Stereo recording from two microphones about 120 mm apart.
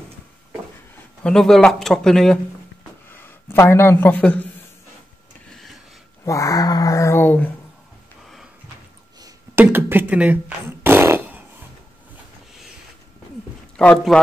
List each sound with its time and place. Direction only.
1.2 s speech: 5° left (ahead or behind)
3.1 s speech: 20° left (ahead or behind)
6.2 s speech: 25° left (ahead or behind)
9.6 s fart: 15° right (ahead or behind)
13.8 s speech: 5° left (ahead or behind)